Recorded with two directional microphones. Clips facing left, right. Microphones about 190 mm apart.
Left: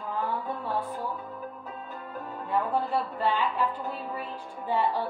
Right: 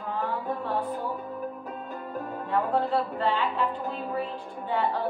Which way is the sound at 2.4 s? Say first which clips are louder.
Right 1 dB; 10° left (ahead or behind).